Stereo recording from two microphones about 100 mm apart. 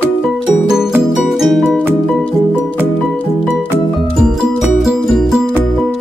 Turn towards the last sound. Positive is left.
turn(degrees=-5)  # may be behind; listen again after turning